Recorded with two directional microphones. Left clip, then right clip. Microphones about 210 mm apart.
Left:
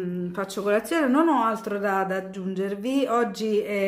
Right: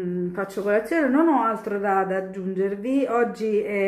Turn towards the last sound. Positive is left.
turn(degrees=20)  # may be behind; listen again after turning